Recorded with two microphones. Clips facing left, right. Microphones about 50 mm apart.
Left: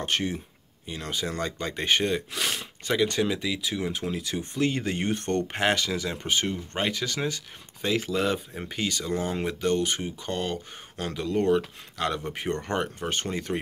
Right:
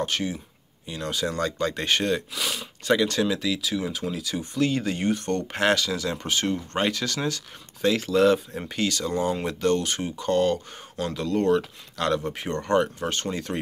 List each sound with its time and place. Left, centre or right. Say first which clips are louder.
0.0 s speech: right 1 dB; left
0.8 s speech: right 3 dB; left
2.3 s speech: even; left
3.1 s speech: right 2 dB; centre; by 5.4 s left
5.5 s speech: right 5 dB; left